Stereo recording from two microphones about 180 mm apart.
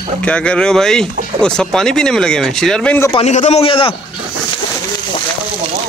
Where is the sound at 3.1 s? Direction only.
40° left (ahead or behind).